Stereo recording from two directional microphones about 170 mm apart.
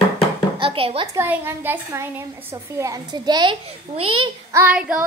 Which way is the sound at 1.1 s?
15° right (ahead or behind).